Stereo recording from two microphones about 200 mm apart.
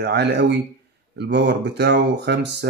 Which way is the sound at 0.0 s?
55° right (ahead or behind).